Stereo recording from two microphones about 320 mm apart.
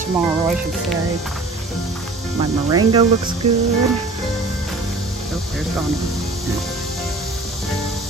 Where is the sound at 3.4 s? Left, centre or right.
Right.